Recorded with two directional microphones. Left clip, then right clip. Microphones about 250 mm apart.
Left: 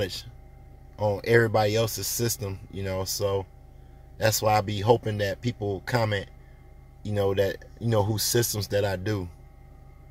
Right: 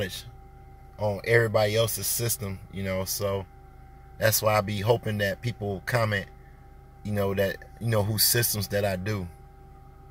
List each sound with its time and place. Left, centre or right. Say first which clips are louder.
0.0 s speech: left 2 dB; centre